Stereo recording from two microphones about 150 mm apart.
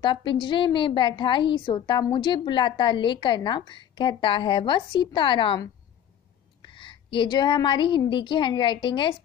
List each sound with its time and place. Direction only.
0.0 s a woman's voice: 30° left (ahead or behind)